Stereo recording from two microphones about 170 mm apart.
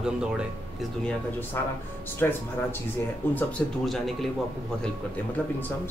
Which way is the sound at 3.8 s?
Centre (ahead or behind).